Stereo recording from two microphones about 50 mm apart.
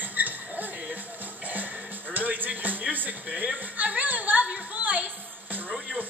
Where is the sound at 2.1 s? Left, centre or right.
Right.